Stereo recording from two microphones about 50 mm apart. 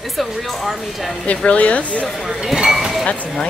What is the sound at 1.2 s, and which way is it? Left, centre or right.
Speech, left.